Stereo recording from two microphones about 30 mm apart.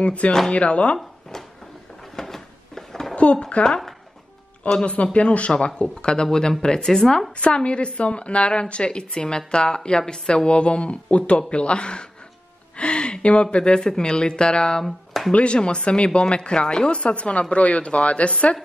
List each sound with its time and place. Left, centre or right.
0.0 s a woman's voice: left
1.3 s a sound: centre
3.2 s a woman's voice: left
4.6 s a woman's voice: left
5.8 s a woman's voice: left; by 7.2 s centre
7.3 s a woman's voice: left
13.7 s a woman's voice: left
14.8 s speech: centre
15.3 s a woman's voice: left